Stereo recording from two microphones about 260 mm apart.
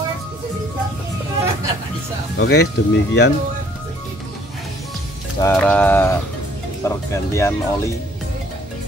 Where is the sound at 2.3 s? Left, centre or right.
Left.